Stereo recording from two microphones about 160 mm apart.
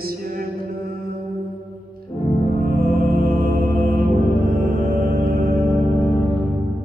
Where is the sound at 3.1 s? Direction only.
65° right (ahead or behind).